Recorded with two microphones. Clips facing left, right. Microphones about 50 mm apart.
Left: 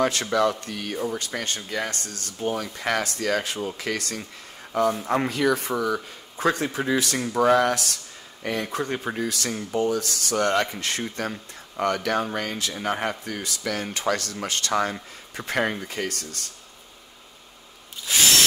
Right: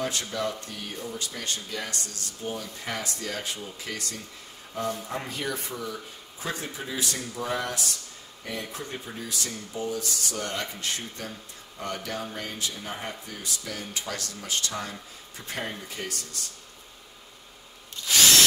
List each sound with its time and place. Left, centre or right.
0.0 s speech: left
1.0 s speech: left
2.4 s speech: left